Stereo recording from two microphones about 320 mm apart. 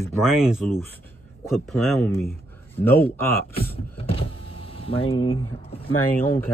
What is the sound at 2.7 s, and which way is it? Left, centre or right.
Speech, centre.